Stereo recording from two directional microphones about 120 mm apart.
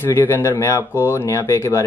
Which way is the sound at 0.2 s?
20° left (ahead or behind).